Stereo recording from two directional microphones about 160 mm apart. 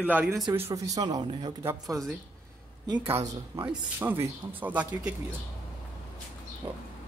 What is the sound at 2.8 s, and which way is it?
Speech, 25° right (ahead or behind).